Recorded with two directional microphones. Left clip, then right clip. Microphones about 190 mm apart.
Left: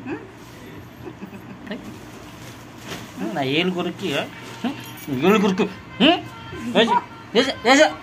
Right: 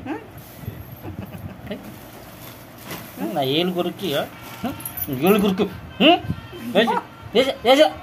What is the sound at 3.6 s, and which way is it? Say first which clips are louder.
A woman's voice: even; 10° right (ahead or behind).